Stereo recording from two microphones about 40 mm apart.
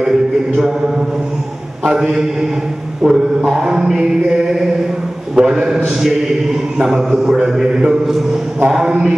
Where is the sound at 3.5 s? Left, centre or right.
Centre.